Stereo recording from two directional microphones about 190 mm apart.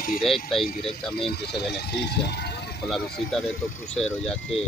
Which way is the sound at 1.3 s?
60° left (ahead or behind).